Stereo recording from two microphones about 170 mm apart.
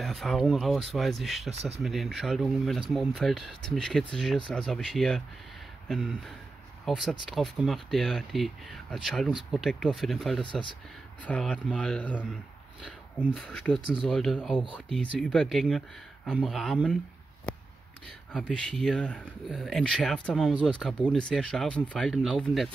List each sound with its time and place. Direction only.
0.0 s speech: centre (ahead or behind)
1.5 s speech: 40° right (ahead or behind)
1.8 s speech: centre (ahead or behind)
10.4 s speech: 30° left (ahead or behind)
11.2 s speech: 5° left (ahead or behind)
18.3 s speech: 5° left (ahead or behind)